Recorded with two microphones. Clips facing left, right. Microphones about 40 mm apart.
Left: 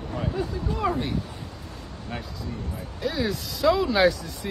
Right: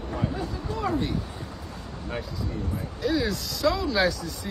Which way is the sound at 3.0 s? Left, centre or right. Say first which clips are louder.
Right 1 dB; centre.